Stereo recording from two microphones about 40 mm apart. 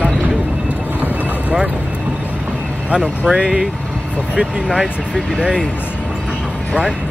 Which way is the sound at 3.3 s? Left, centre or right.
Right.